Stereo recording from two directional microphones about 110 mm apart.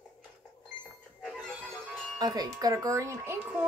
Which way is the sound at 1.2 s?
5° left (ahead or behind).